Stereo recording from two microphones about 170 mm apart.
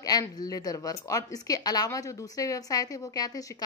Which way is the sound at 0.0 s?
20° left (ahead or behind).